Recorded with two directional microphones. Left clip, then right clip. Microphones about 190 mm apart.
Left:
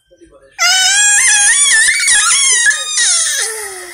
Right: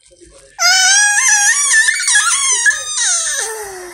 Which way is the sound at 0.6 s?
30° left (ahead or behind).